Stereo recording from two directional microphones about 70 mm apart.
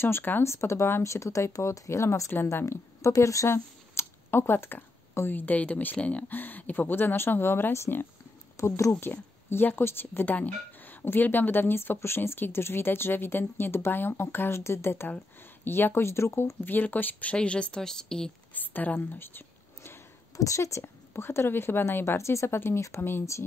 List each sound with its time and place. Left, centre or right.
0.0 s speech: left
3.4 s speech: left
8.5 s speech: left
9.0 s speech: left
16.6 s speech: left; by 18.3 s centre
18.5 s a sound: left
20.3 s speech: left